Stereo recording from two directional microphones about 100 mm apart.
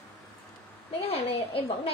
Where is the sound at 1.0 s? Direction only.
80° left.